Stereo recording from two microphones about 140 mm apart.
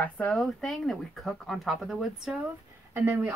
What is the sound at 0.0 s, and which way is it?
A woman's voice, 5° left (ahead or behind).